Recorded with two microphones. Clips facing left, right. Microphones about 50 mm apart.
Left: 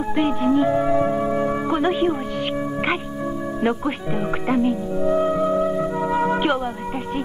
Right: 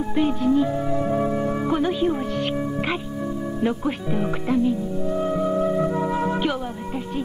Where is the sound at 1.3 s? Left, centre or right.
Left.